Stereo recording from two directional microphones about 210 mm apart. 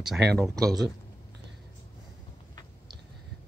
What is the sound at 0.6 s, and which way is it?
Speech, 15° right (ahead or behind).